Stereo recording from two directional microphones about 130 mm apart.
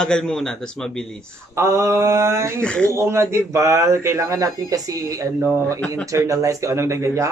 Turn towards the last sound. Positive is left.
turn(degrees=-25)  # may be behind; listen again after turning